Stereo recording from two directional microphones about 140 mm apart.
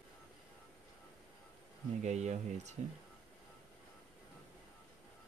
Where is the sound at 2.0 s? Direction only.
55° right (ahead or behind).